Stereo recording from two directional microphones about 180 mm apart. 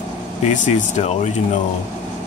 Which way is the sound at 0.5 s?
40° left (ahead or behind).